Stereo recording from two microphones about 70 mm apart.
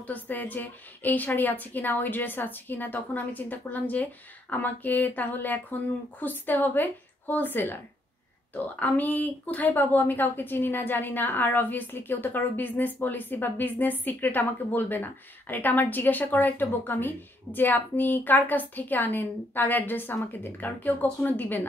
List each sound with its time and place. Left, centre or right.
0.0 s speech: left
8.7 s speech: left